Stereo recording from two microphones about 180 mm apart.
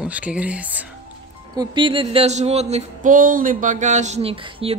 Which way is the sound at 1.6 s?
30° right (ahead or behind).